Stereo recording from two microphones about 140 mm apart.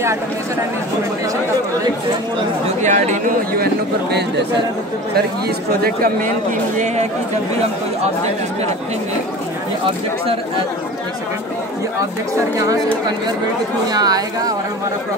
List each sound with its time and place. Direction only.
2.8 s speech: 60° right (ahead or behind)
5.8 s a man's voice: 90° right
12.5 s speech: 25° right (ahead or behind)
13.9 s speech: 30° right (ahead or behind)